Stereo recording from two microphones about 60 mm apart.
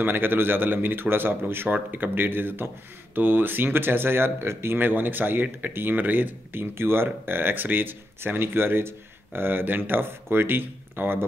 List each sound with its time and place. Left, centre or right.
0.0 s speech: right